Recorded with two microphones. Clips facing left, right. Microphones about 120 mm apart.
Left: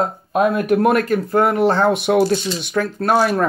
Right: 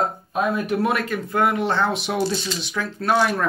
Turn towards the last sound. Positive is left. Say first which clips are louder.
# left 4 dB
turn(degrees=45)  # may be behind; listen again after turning